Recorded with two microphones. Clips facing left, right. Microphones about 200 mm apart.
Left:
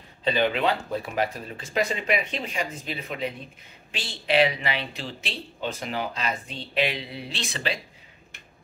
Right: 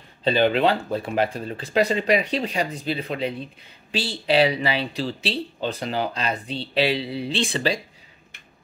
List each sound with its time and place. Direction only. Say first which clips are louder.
0.2 s speech: right 5 dB; 35° right (ahead or behind)